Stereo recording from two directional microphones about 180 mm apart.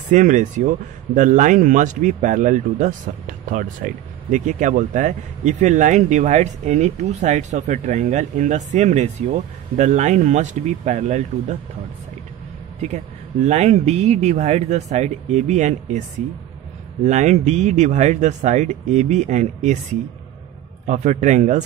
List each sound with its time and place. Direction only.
0.1 s speech: 45° right (ahead or behind)
12.8 s speech: 40° right (ahead or behind)
17.0 s speech: 40° right (ahead or behind)